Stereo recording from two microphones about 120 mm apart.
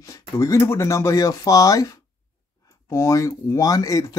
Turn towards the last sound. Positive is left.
turn(degrees=30)  # may be behind; listen again after turning